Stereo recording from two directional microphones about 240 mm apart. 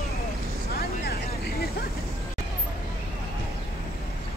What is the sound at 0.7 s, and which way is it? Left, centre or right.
Vehicle, left.